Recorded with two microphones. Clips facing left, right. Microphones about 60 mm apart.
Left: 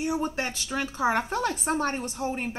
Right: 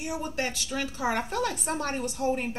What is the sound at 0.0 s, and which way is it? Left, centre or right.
Speech, left.